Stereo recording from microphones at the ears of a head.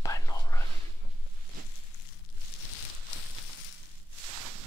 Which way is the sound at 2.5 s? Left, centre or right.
Left.